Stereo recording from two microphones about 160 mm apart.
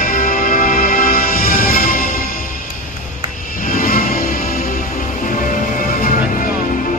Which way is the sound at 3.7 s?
60° left (ahead or behind).